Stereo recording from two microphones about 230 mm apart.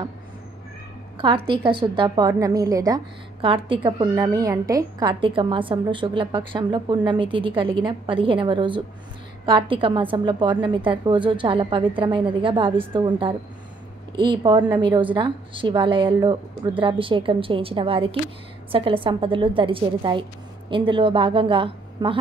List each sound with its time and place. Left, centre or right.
1.1 s a woman's voice: right